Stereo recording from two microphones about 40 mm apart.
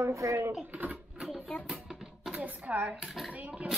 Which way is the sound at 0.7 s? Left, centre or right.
Right.